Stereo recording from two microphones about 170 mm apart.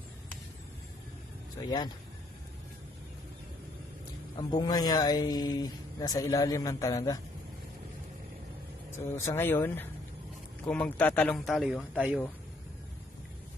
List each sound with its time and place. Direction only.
1.6 s speech: 25° left (ahead or behind)
4.4 s speech: 25° left (ahead or behind)
9.1 s speech: 15° left (ahead or behind); by 12.2 s centre (ahead or behind)